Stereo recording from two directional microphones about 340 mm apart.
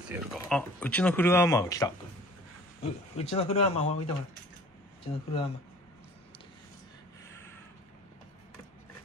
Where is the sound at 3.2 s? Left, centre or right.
Centre.